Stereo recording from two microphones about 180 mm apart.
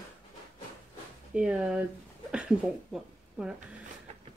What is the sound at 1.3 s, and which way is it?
Speech, 5° right (ahead or behind).